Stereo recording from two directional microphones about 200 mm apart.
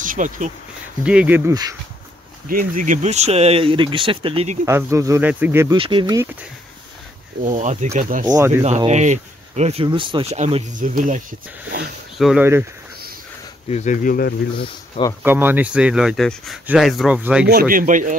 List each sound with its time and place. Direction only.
0.0 s speech: 40° right (ahead or behind)
1.0 s speech: 5° right (ahead or behind)
2.4 s speech: 45° right (ahead or behind)
4.6 s speech: 15° right (ahead or behind)
5.8 s speech: 25° right (ahead or behind)
7.4 s speech: 35° right (ahead or behind)
8.4 s speech: 10° right (ahead or behind)
8.6 s speech: 35° right (ahead or behind)
12.2 s speech: centre (ahead or behind)
13.7 s speech: 35° left (ahead or behind)
15.2 s speech: 10° right (ahead or behind)
17.5 s speech: 45° right (ahead or behind)